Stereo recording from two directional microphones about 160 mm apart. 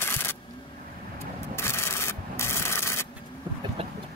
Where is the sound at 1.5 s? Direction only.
15° left (ahead or behind).